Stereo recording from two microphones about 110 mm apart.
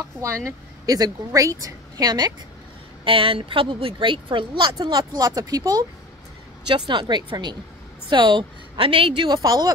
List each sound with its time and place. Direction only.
0.2 s a woman's voice: 25° right (ahead or behind)
3.1 s a woman's voice: 55° right (ahead or behind)
4.7 s a woman's voice: 35° right (ahead or behind)